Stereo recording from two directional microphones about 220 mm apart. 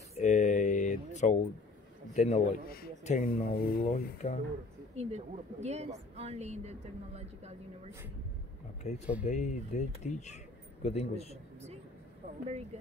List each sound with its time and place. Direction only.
0.1 s a sound: 35° left (ahead or behind)
2.1 s speech: 30° left (ahead or behind)
4.2 s speech: 30° left (ahead or behind)
4.9 s a woman's voice: 30° right (ahead or behind)
8.8 s speech: 30° left (ahead or behind)